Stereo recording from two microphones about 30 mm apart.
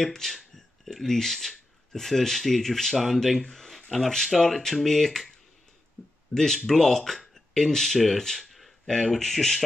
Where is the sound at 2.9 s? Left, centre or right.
Centre.